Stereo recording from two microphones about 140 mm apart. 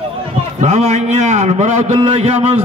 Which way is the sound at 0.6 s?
55° right (ahead or behind).